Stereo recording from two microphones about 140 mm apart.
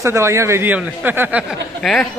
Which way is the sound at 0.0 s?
20° right (ahead or behind).